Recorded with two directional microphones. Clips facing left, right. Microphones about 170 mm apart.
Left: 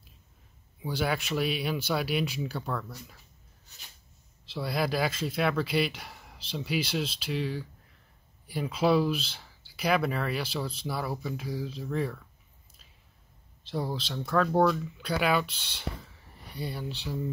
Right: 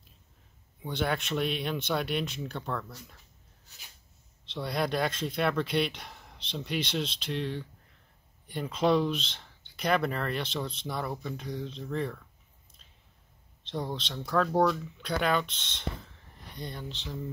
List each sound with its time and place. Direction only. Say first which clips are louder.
0.8 s speech: left 1 dB; 5° left (ahead or behind)
4.5 s speech: left 1 dB; 5° left (ahead or behind)
13.7 s speech: left 2 dB; 5° left (ahead or behind)